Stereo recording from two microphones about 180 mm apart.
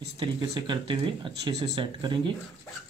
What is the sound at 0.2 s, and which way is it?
Speech, 25° right (ahead or behind).